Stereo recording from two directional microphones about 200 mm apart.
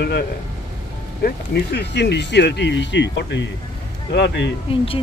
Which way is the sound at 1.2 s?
55° left (ahead or behind).